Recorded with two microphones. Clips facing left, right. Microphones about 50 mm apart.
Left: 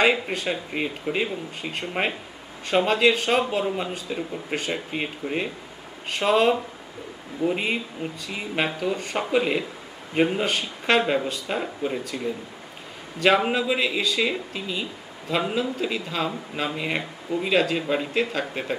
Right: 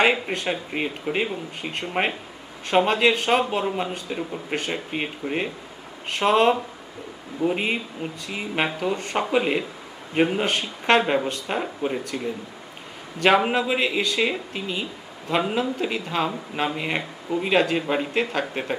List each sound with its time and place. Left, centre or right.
0.0 s speech: centre
13.2 s speech: centre
14.5 s speech: centre
15.2 s speech: centre
18.2 s speech: centre